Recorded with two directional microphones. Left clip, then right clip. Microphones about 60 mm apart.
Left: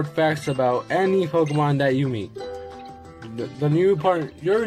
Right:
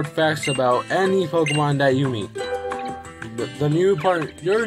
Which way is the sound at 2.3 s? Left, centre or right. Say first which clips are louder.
Right 8 dB; right.